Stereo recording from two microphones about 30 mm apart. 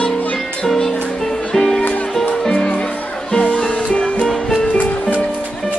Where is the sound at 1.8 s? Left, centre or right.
Left.